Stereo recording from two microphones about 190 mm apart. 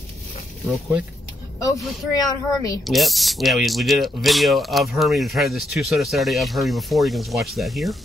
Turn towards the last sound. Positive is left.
turn(degrees=0)  # may be behind; listen again after turning